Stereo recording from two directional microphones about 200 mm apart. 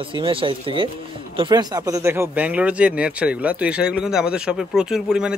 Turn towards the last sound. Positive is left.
turn(degrees=-5)  # may be behind; listen again after turning